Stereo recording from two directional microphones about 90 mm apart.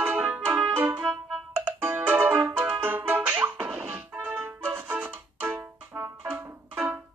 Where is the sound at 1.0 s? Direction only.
5° right (ahead or behind).